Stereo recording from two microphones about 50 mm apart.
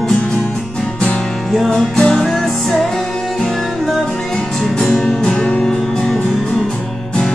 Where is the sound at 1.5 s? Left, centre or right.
Centre.